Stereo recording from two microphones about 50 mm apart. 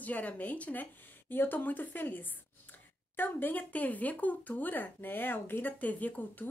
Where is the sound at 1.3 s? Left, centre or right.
Left.